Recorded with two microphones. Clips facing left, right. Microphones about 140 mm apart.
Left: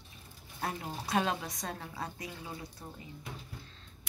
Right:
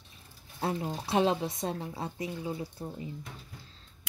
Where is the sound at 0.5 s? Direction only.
25° right (ahead or behind).